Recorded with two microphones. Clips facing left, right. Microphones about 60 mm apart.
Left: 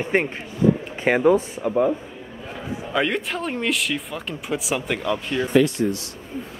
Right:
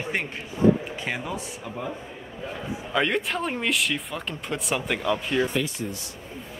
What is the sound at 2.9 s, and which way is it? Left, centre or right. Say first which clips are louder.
Speech: left 1 dB; centre.